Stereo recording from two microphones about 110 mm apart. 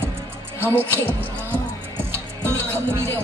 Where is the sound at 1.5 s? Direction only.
20° right (ahead or behind).